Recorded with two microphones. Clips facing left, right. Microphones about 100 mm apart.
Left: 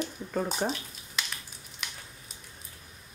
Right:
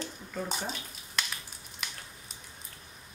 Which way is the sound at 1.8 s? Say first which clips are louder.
Even; centre (ahead or behind).